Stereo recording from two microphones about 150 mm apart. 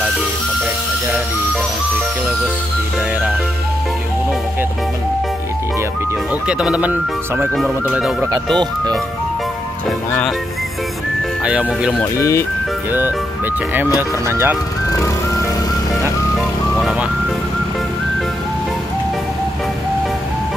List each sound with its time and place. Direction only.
6.4 s speech: 5° right (ahead or behind)
11.4 s speech: 5° right (ahead or behind)
12.0 s speech: 20° left (ahead or behind)
14.2 s speech: 15° right (ahead or behind)
14.9 s ice cream truck: 20° left (ahead or behind)